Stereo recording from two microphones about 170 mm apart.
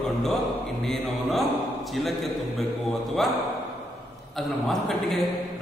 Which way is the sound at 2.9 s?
Centre (ahead or behind).